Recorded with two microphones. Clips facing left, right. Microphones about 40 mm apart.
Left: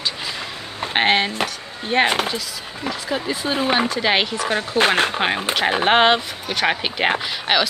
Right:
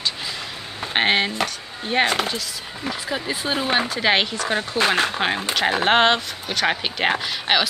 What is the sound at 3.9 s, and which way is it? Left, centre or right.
A woman's voice, centre.